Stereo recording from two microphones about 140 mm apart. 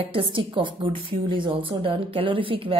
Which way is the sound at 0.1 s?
40° right (ahead or behind).